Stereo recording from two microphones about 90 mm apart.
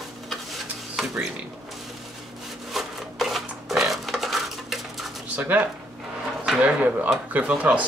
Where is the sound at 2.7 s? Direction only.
Centre (ahead or behind).